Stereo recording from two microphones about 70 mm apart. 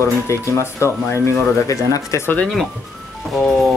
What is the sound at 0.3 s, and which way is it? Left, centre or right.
Speech, left.